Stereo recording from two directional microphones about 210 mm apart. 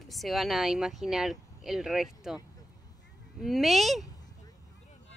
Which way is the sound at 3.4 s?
Centre (ahead or behind).